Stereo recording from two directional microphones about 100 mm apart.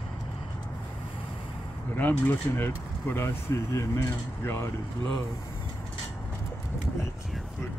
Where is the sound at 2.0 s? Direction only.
20° left (ahead or behind).